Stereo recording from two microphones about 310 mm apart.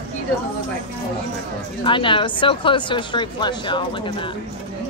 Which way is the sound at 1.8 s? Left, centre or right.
Centre.